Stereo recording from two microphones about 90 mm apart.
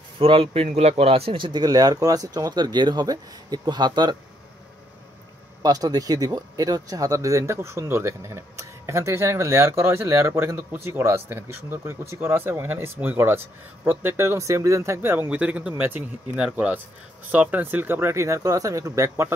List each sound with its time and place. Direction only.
0.2 s speech: 90° right; by 4.2 s 55° right (ahead or behind)
5.6 s speech: 45° right (ahead or behind)